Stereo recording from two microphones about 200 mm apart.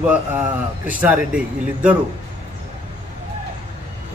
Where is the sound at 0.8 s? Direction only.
10° right (ahead or behind).